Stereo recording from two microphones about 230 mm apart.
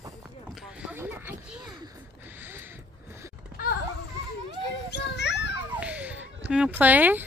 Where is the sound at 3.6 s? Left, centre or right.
Left.